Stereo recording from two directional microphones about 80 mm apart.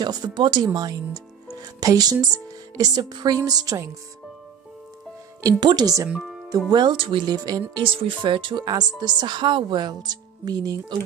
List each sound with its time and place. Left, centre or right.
0.0 s speech: right
0.7 s speech: right
5.6 s speech: right
7.8 s speech: right